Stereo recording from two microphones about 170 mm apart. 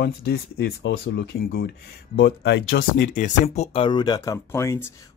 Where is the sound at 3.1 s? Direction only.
45° left (ahead or behind); by 4.9 s 15° left (ahead or behind).